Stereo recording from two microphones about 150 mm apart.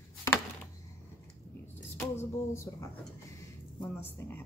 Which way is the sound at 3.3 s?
15° left (ahead or behind).